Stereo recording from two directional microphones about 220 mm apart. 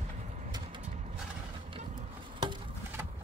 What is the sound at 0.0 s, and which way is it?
Music, 30° right (ahead or behind).